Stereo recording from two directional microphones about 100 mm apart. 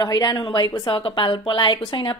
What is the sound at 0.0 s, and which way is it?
A woman's voice, 45° left (ahead or behind).